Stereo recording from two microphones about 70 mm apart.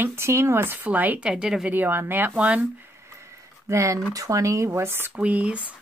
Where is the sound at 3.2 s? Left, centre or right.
Right.